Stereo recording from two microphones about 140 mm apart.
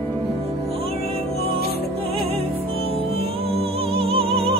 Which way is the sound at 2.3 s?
45° right (ahead or behind).